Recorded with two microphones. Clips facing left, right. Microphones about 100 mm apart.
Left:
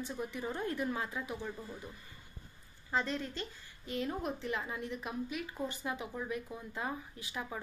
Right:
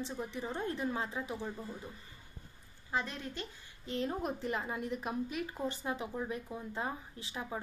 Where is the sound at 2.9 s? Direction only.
10° right (ahead or behind).